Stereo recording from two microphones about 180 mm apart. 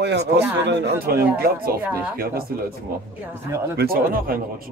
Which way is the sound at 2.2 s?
55° right (ahead or behind).